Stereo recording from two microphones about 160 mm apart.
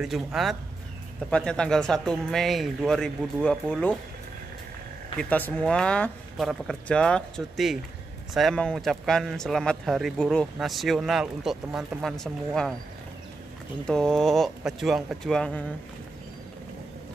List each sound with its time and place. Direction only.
0.0 s speech: centre (ahead or behind)
5.3 s speech: 10° left (ahead or behind)
13.8 s speech: 5° left (ahead or behind)